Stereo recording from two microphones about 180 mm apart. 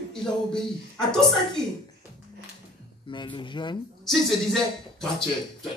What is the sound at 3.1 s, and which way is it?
Speech, 25° left (ahead or behind).